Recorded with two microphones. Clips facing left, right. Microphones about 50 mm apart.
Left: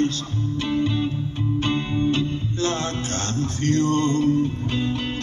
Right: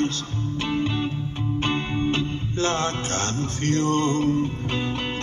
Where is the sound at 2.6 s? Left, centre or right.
Right.